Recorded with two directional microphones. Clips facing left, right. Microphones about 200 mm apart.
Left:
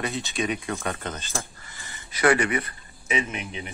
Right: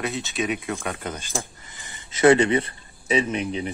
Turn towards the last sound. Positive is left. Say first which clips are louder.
# right 7 dB
turn(degrees=-35)  # may be behind; listen again after turning